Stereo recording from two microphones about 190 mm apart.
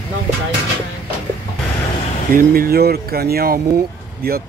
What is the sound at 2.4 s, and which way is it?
Speech, 50° right (ahead or behind).